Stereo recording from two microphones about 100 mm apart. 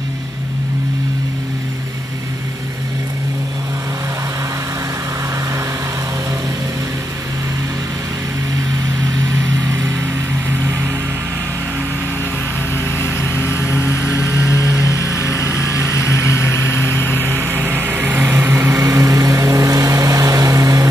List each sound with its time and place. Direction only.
9.7 s vehicle: 30° right (ahead or behind)
10.6 s music: 25° right (ahead or behind)
12.7 s vehicle: 20° left (ahead or behind)
16.7 s vehicle: 20° left (ahead or behind)
17.2 s vehicle: 20° right (ahead or behind)